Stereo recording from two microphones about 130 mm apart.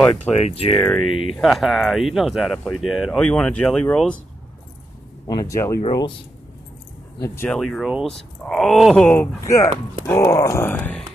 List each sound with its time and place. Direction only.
0.4 s speech: 50° left (ahead or behind)
1.3 s speech: centre (ahead or behind)
5.3 s groan: 25° left (ahead or behind)
7.2 s groan: 20° left (ahead or behind)
7.5 s speech: centre (ahead or behind)
9.0 s speech: 15° left (ahead or behind)
9.4 s groan: 25° left (ahead or behind)